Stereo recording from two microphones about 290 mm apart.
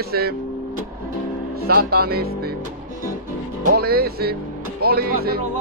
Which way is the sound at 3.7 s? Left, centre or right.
Right.